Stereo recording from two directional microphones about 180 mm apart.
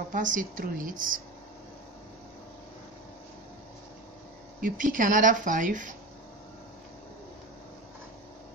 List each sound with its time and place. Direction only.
0.1 s speech: 45° right (ahead or behind)
4.6 s speech: 50° right (ahead or behind)